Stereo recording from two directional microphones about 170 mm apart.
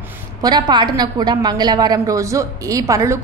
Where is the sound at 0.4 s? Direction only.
25° right (ahead or behind).